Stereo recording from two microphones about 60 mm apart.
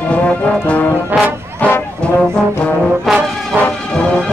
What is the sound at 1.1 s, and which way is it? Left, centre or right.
Brass instrument, right.